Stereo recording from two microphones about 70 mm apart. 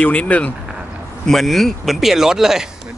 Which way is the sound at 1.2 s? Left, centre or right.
Centre.